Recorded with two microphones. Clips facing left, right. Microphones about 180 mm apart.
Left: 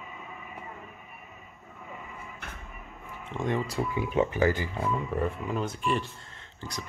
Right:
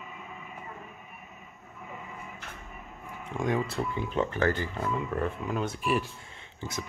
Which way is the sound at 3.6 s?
10° left (ahead or behind).